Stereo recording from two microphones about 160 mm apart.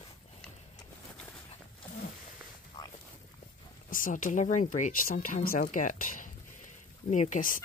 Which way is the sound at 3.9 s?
55° left (ahead or behind).